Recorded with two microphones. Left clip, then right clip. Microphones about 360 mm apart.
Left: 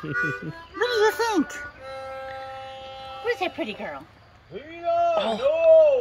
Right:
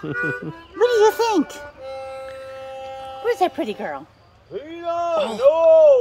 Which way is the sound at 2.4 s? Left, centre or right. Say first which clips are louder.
Right 3 dB; right.